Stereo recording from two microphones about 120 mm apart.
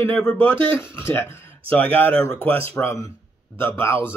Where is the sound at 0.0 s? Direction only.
20° left (ahead or behind).